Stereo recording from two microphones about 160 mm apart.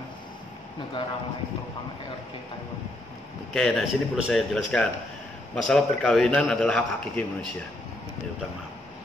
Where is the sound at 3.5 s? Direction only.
Centre (ahead or behind).